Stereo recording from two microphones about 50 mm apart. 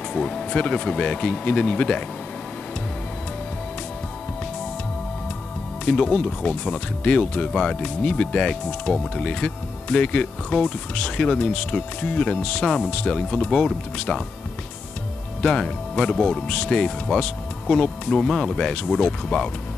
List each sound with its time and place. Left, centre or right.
0.1 s speech: centre
5.9 s speech: centre
15.4 s speech: centre